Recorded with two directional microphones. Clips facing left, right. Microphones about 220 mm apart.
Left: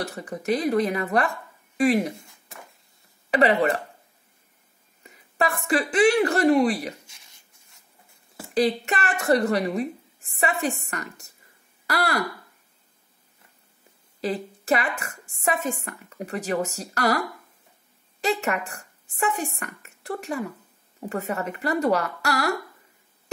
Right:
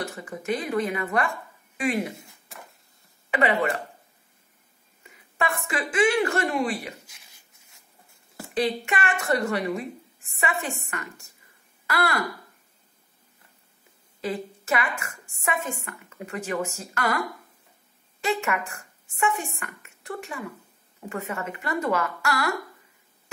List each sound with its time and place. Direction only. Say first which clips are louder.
0.0 s speech: left 3 dB; 35° left (ahead or behind)
3.3 s speech: left 4 dB; 40° left (ahead or behind)
5.4 s speech: left 4 dB; 35° left (ahead or behind)
8.5 s speech: left 3 dB; 40° left (ahead or behind)
14.2 s speech: left 2 dB; 35° left (ahead or behind)
18.2 s speech: left 2 dB; 40° left (ahead or behind)